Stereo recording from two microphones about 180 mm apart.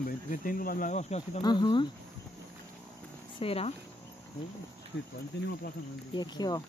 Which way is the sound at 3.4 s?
35° left (ahead or behind).